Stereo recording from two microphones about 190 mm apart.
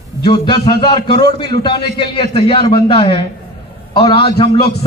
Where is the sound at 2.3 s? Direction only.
30° left (ahead or behind).